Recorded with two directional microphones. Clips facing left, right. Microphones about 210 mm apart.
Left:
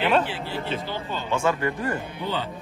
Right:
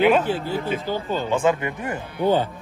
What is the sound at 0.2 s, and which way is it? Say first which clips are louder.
A man's voice: right 5 dB; 45° right (ahead or behind).